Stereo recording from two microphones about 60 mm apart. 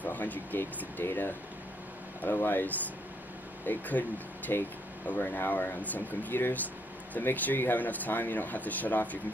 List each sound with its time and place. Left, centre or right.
0.0 s speech: left
4.5 s speech: left